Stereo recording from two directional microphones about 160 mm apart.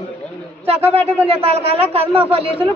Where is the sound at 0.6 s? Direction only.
40° right (ahead or behind).